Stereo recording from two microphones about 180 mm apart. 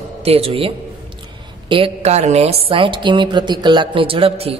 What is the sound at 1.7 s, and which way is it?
A woman's voice, 35° right (ahead or behind).